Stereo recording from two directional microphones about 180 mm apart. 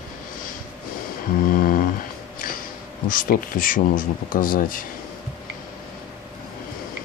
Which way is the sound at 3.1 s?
50° left (ahead or behind).